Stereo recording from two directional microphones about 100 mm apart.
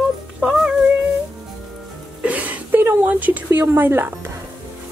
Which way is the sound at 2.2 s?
15° right (ahead or behind).